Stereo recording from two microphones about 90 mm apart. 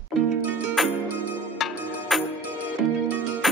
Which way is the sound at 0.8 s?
Centre (ahead or behind).